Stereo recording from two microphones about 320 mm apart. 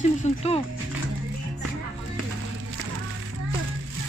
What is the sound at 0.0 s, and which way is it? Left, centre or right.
Speech, left.